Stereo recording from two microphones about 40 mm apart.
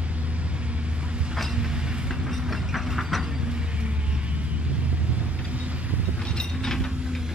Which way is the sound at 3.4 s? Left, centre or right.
Right.